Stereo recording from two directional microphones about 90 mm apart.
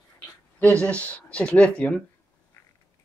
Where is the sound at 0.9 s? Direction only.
15° left (ahead or behind).